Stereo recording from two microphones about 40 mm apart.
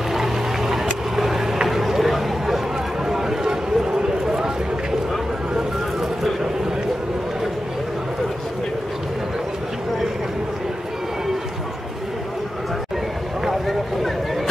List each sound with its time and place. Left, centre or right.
0.1 s a sound: centre
1.1 s vehicle: centre
3.1 s clip-clop: centre